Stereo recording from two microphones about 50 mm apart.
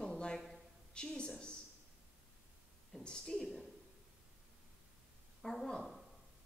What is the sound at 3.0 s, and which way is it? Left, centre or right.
Speech, centre.